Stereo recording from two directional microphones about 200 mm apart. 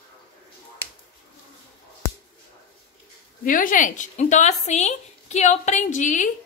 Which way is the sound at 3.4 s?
40° left (ahead or behind).